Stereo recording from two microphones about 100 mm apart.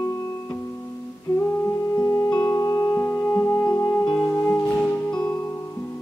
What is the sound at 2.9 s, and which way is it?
Music, 25° left (ahead or behind).